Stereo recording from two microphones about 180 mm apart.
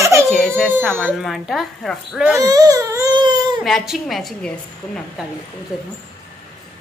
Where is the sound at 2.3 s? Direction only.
20° right (ahead or behind).